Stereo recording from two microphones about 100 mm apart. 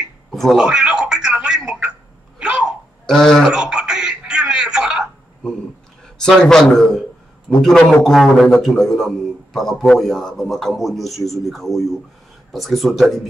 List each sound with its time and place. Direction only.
0.3 s speech: 5° left (ahead or behind)
0.7 s a sound: 10° right (ahead or behind)
3.1 s a man's voice: 5° left (ahead or behind)
3.4 s music: 10° right (ahead or behind)
6.1 s a man's voice: 5° left (ahead or behind)